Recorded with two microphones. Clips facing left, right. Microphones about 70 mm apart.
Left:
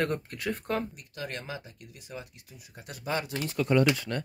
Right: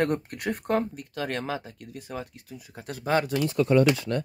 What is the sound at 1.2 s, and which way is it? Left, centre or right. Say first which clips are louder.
Speech: right 7 dB; right.